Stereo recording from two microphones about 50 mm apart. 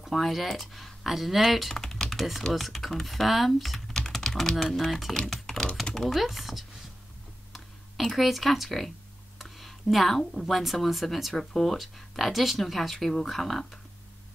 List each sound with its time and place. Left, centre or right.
0.0 s speech: centre
1.8 s typing: centre
2.5 s speech: centre
3.9 s typing: centre
5.1 s speech: centre